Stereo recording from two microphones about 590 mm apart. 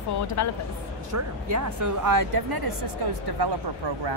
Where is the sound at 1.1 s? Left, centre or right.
Right.